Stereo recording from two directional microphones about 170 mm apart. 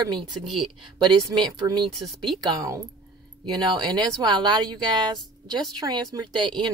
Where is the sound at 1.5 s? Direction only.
20° right (ahead or behind).